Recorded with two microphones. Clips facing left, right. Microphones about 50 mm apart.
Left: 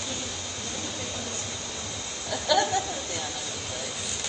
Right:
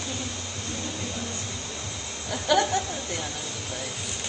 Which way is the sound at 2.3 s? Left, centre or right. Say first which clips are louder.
Right 1 dB; right.